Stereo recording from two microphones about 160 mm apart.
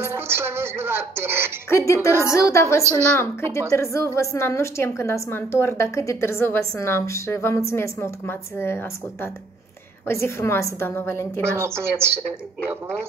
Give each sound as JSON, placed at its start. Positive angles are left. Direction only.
{"t": 0.0, "sound": "speech", "side_deg": -15}
{"t": 1.7, "sound": "a woman's voice", "side_deg": 20}
{"t": 2.8, "sound": "speech", "side_deg": -15}
{"t": 3.2, "sound": "a woman's voice", "side_deg": 15}
{"t": 11.4, "sound": "speech", "side_deg": -15}